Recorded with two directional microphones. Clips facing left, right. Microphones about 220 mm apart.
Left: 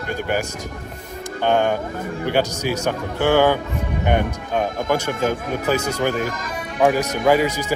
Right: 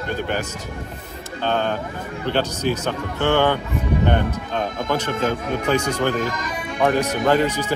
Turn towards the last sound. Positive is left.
turn(degrees=10)  # may be behind; listen again after turning